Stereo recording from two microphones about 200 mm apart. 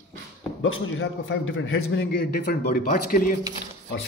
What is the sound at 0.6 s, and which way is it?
A man's voice, 75° left (ahead or behind).